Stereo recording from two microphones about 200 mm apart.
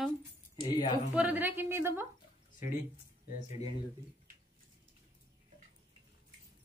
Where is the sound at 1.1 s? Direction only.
5° right (ahead or behind).